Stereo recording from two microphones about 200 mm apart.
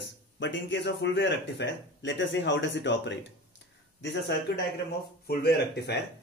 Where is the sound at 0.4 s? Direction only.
65° left (ahead or behind).